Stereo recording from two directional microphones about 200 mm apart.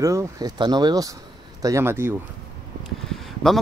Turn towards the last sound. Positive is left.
turn(degrees=0)  # may be behind; listen again after turning